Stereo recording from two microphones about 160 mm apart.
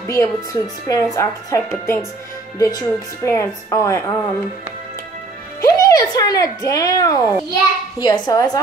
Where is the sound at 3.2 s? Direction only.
20° left (ahead or behind).